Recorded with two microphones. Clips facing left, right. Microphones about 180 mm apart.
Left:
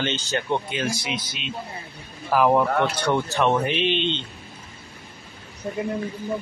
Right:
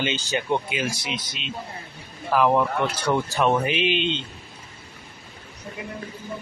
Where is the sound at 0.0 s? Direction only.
10° right (ahead or behind); by 2.6 s 5° left (ahead or behind).